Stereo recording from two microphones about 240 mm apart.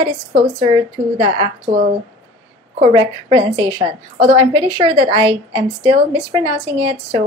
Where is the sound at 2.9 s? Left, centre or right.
Centre.